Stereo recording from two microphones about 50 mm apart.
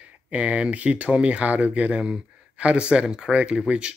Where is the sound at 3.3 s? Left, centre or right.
Right.